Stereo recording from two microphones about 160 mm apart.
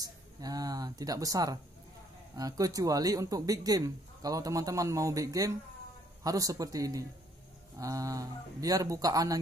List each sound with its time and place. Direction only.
0.0 s speech: 25° right (ahead or behind)